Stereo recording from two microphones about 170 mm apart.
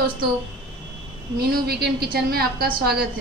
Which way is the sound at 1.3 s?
65° right (ahead or behind).